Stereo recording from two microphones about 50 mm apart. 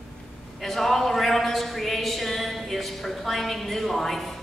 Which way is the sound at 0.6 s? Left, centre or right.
Centre.